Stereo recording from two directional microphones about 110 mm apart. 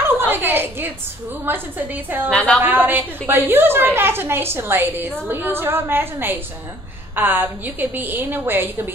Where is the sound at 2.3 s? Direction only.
10° left (ahead or behind).